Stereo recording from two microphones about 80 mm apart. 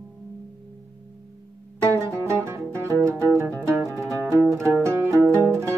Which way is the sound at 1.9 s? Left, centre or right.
Right.